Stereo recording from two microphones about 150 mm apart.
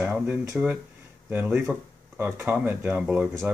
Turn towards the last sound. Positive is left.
turn(degrees=-10)  # may be behind; listen again after turning